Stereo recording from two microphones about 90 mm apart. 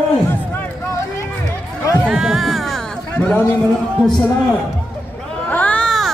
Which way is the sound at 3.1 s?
15° left (ahead or behind).